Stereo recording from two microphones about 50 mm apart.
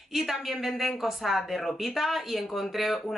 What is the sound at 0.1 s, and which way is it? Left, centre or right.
Speech, centre.